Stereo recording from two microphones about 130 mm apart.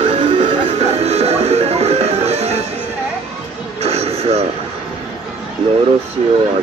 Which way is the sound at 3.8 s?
50° right (ahead or behind).